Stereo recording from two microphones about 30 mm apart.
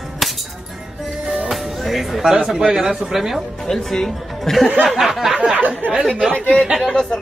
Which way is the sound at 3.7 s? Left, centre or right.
Centre.